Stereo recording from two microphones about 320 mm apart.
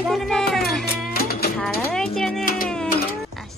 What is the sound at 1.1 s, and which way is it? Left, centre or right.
Music, left.